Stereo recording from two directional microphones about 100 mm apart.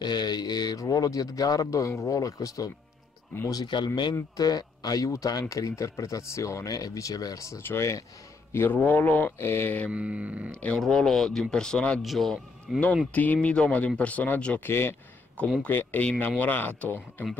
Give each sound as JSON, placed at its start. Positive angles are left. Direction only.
{"t": 0.0, "sound": "speech", "side_deg": 45}
{"t": 9.8, "sound": "speech", "side_deg": -10}
{"t": 10.5, "sound": "speech", "side_deg": 10}
{"t": 13.1, "sound": "speech", "side_deg": 15}